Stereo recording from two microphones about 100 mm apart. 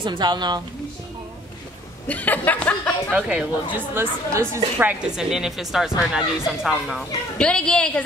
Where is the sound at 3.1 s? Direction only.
15° right (ahead or behind).